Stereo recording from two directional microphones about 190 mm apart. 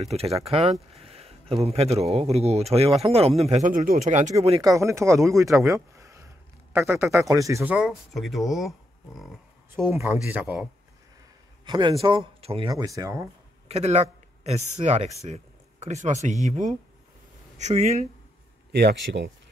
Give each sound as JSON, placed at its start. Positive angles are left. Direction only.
{"t": 0.0, "sound": "speech", "side_deg": -35}
{"t": 4.6, "sound": "speech", "side_deg": -15}
{"t": 9.8, "sound": "speech", "side_deg": -15}
{"t": 11.6, "sound": "speech", "side_deg": -25}
{"t": 13.7, "sound": "speech", "side_deg": -35}
{"t": 18.7, "sound": "speech", "side_deg": -60}